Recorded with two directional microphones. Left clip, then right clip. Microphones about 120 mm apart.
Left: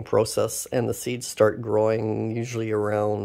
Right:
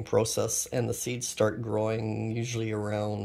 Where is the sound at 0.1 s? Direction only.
25° left (ahead or behind).